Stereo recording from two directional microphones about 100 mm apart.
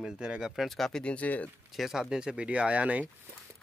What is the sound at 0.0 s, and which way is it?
Speech, 10° right (ahead or behind).